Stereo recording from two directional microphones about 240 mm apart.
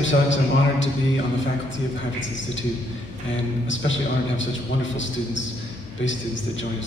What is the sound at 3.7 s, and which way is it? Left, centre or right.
A man's voice, left.